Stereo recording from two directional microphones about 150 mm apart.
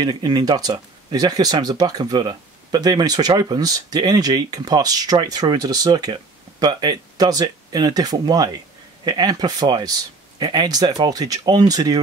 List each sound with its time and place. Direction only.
0.0 s speech: 25° right (ahead or behind)